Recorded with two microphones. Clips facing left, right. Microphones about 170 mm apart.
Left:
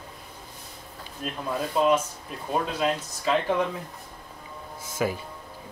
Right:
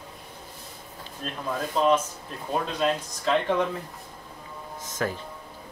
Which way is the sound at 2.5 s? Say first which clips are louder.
Even; 5° left (ahead or behind).